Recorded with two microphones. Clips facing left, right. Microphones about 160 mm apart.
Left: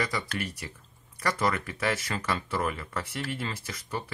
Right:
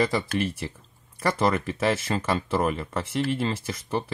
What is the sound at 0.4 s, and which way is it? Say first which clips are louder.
Speech: right 8 dB; 25° right (ahead or behind).